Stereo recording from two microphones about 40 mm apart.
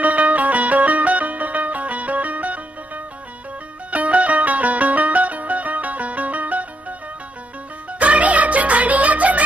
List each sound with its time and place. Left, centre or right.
0.0 s music: right
3.9 s music: right
8.0 s music: right